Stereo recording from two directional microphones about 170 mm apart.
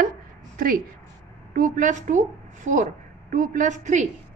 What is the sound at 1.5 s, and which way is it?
A woman's voice, 50° right (ahead or behind).